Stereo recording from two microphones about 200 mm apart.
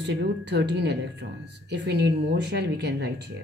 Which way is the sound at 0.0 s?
60° right (ahead or behind).